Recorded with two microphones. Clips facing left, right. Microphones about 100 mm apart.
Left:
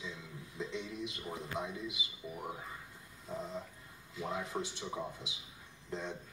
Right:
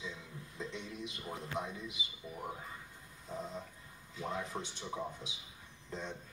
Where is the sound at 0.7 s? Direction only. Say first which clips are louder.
Left 3 dB; 10° left (ahead or behind).